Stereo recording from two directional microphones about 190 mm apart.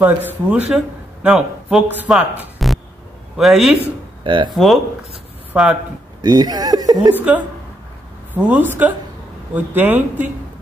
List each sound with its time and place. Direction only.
0.0 s a man's voice: 10° right (ahead or behind)
4.2 s speech: 25° right (ahead or behind)
5.5 s a man's voice: 5° right (ahead or behind)
6.2 s speech: 20° right (ahead or behind)
7.2 s a man's voice: 10° right (ahead or behind)